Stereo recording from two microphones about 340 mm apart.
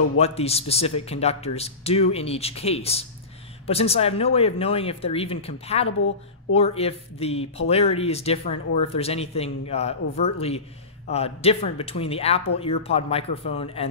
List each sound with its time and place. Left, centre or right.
0.2 s a man's voice: centre